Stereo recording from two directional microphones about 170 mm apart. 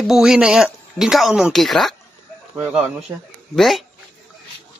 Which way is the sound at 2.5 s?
10° right (ahead or behind).